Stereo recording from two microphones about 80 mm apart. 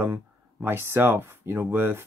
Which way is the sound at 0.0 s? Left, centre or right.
Right.